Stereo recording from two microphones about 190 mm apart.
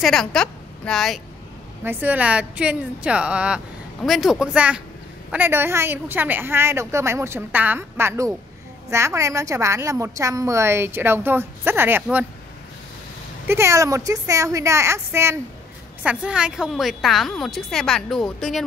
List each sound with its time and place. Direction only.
0.0 s a woman's voice: centre (ahead or behind)
1.9 s a woman's voice: 10° right (ahead or behind)
13.5 s a woman's voice: 15° right (ahead or behind); by 18.6 s centre (ahead or behind)